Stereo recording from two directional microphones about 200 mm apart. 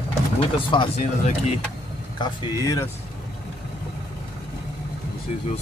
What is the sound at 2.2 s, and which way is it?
Speech, 20° left (ahead or behind).